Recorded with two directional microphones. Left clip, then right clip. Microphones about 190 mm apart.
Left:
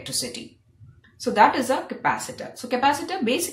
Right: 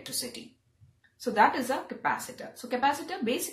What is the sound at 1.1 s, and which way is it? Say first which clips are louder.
A woman's voice: left 6 dB; 5° left (ahead or behind).